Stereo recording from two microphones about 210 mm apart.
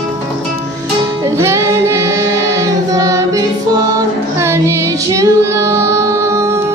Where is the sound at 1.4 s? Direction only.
15° right (ahead or behind).